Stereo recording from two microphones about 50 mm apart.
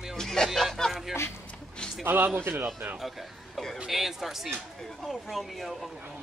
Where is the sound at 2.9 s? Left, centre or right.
Centre.